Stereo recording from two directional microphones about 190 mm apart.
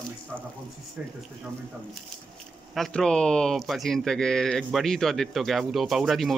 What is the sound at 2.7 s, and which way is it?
Speech, centre (ahead or behind).